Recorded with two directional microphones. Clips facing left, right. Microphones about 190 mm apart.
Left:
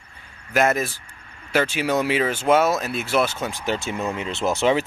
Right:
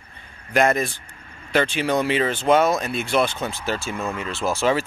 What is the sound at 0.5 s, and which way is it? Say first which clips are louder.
Speech: right 1 dB; 5° left (ahead or behind).